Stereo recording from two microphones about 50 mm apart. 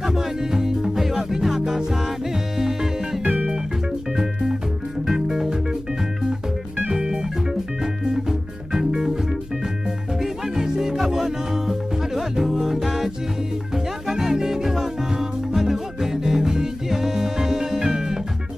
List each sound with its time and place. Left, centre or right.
0.0 s music: centre
3.3 s music: right
5.1 s music: centre
6.9 s music: centre
10.2 s music: centre